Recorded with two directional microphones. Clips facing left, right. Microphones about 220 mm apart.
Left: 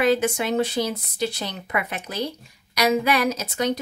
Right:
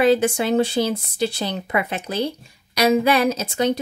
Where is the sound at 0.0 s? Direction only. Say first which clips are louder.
Right 4 dB; 30° right (ahead or behind).